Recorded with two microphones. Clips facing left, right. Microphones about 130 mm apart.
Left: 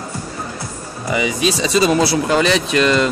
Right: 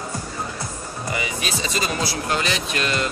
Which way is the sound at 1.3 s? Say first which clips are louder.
Left 9 dB; 90° left.